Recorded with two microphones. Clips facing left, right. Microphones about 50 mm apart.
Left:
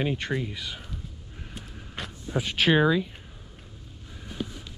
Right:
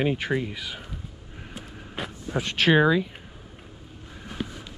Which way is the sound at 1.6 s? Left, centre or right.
Centre.